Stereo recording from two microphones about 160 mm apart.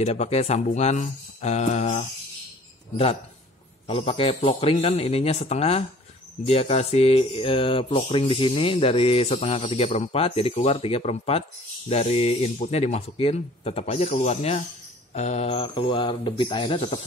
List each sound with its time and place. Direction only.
0.0 s speech: 40° left (ahead or behind)
3.8 s mantra: 40° left (ahead or behind)